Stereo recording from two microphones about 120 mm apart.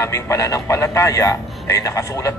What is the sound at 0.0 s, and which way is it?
A man's voice, 25° left (ahead or behind).